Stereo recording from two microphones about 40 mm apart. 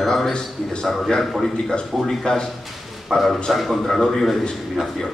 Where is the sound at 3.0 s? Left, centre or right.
Centre.